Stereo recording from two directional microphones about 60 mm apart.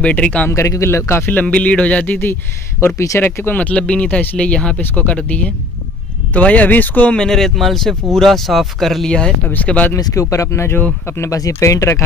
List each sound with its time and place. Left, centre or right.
0.0 s speech: left
0.5 s speech: left
1.3 s speech: left
3.2 s speech: left
3.5 s speech: left
7.2 s speech: centre
9.5 s speech: left
9.9 s speech: left